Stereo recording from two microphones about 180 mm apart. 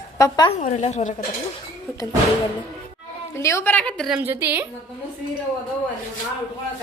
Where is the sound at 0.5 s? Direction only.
40° left (ahead or behind).